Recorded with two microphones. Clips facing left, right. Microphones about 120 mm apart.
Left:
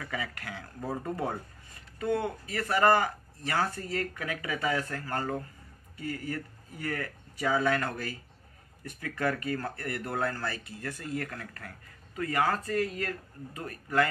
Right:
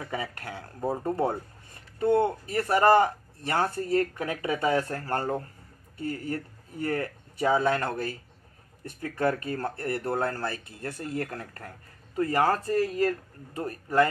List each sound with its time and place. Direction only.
0.0 s speech: 30° right (ahead or behind)
3.5 s speech: 40° right (ahead or behind)
9.2 s speech: 30° right (ahead or behind)
11.0 s speech: 30° right (ahead or behind)